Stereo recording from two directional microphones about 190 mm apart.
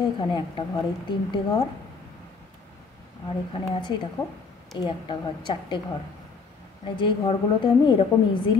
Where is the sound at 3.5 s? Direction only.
25° left (ahead or behind).